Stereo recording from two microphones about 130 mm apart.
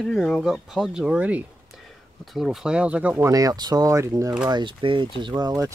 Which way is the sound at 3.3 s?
30° right (ahead or behind).